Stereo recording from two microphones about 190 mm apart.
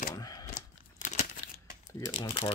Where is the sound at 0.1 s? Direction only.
20° left (ahead or behind).